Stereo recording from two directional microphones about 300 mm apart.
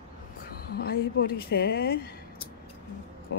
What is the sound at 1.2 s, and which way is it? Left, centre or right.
Speech, left.